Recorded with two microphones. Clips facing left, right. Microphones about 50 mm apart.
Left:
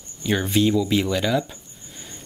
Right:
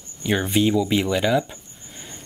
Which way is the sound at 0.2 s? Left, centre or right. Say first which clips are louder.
Even; centre.